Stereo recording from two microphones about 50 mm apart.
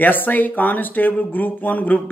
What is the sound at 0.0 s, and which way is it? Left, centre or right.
Speech, left.